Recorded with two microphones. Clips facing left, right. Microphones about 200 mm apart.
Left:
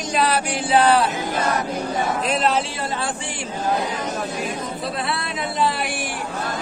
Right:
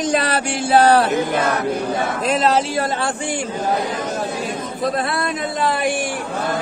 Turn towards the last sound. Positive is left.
turn(degrees=-50)  # may be behind; listen again after turning